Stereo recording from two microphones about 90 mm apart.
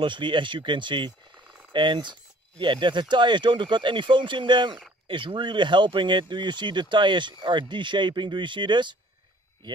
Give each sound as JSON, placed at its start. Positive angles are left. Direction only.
{"t": 0.0, "sound": "speech", "side_deg": -65}